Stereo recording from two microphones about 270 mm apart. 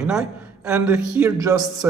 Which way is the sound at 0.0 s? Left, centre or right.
Centre.